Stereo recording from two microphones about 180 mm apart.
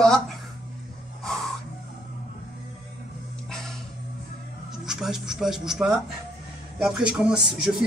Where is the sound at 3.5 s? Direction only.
Centre (ahead or behind).